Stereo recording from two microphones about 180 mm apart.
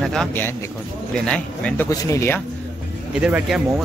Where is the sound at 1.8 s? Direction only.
15° left (ahead or behind).